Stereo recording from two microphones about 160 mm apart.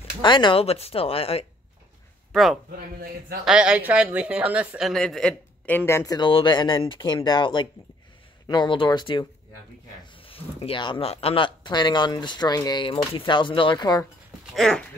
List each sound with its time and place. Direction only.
0.2 s speech: 30° left (ahead or behind)
2.3 s speech: centre (ahead or behind); by 6.1 s 15° left (ahead or behind)
6.1 s speech: 30° left (ahead or behind)
14.5 s speech: 5° left (ahead or behind)